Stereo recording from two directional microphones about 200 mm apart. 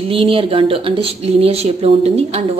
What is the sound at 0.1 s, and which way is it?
A woman's voice, 25° right (ahead or behind).